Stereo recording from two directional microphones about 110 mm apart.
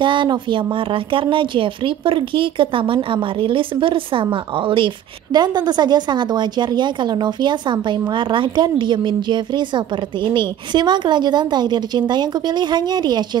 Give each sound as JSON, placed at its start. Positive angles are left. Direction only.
{"t": 0.0, "sound": "a woman's voice", "side_deg": -45}